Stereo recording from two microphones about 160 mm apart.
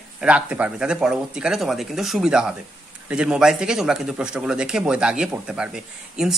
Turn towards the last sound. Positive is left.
turn(degrees=-5)  # may be behind; listen again after turning